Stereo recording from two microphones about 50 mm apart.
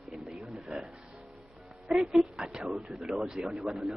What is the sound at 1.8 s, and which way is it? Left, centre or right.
Speech, centre.